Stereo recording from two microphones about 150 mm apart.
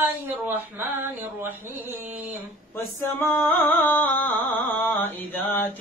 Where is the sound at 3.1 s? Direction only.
15° left (ahead or behind).